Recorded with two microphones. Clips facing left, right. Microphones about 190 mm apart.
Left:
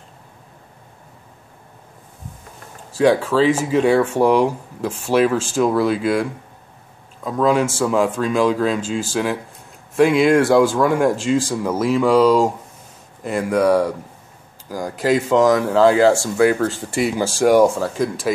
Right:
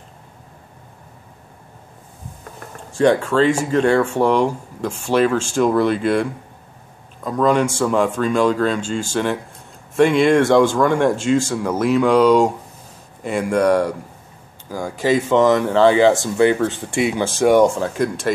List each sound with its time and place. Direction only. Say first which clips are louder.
2.9 s speech: even; 5° left (ahead or behind)
7.2 s speech: even; 5° left (ahead or behind)